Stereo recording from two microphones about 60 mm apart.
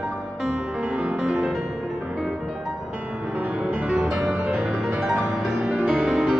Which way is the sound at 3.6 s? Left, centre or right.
Centre.